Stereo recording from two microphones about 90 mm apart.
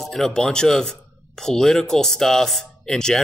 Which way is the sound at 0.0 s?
5° left (ahead or behind).